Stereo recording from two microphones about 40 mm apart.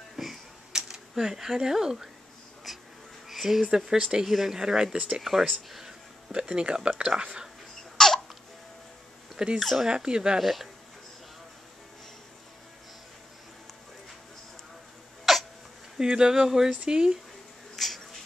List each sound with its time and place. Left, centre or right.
0.1 s a sound: centre
3.3 s a sound: centre
3.7 s speech: centre
5.3 s speech: centre
5.7 s speech: centre
6.3 s speech: right
8.0 s laughter: centre
9.6 s speech: centre
9.8 s speech: right
10.4 s speech: centre
15.3 s hiccup: centre
16.0 s speech: centre
17.7 s a sound: centre